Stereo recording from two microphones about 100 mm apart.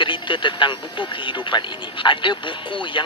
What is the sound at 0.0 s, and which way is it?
Speech, 55° left (ahead or behind).